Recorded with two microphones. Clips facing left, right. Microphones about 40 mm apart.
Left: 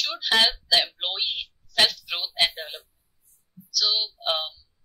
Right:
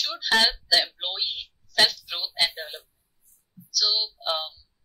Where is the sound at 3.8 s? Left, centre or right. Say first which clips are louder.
Even; left.